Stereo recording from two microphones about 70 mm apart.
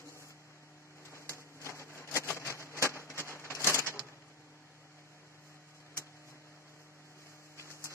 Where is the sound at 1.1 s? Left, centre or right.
Left.